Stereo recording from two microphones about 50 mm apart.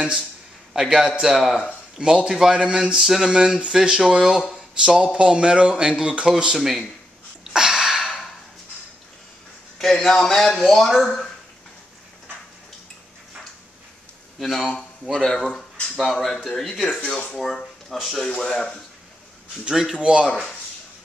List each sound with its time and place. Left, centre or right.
0.7 s a man's voice: centre
7.5 s a sound: centre
9.8 s speech: centre
15.1 s speech: centre
19.7 s speech: centre
20.0 s a man's voice: centre